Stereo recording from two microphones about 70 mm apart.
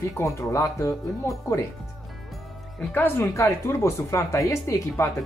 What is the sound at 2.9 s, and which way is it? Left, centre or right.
Speech, left.